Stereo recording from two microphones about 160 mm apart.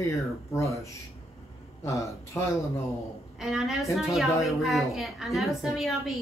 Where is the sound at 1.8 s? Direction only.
20° left (ahead or behind).